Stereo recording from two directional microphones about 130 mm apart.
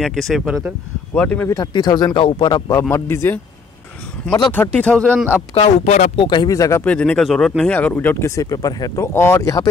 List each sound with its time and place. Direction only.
0.0 s speech: centre (ahead or behind)
1.5 s speech: 35° left (ahead or behind)
2.9 s speech: 20° left (ahead or behind)
4.5 s speech: 10° left (ahead or behind)
5.5 s speech: 60° left (ahead or behind)
6.1 s speech: 35° left (ahead or behind)
6.8 s speech: 10° left (ahead or behind)
8.4 s speech: 25° left (ahead or behind)